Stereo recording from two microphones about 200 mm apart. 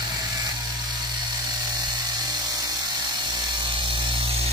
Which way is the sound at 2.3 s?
20° right (ahead or behind).